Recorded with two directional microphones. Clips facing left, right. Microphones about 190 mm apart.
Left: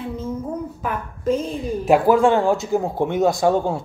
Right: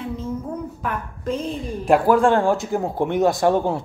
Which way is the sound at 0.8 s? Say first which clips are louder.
Left 5 dB; centre (ahead or behind).